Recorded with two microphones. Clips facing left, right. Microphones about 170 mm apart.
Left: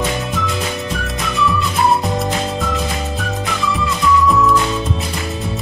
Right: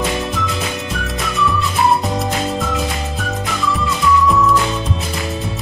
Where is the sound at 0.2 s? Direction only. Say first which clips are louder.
Even; centre (ahead or behind).